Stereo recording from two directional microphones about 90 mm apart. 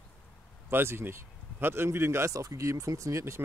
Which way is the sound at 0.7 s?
25° right (ahead or behind).